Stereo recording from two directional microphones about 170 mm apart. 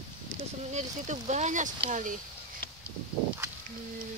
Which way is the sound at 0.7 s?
45° right (ahead or behind).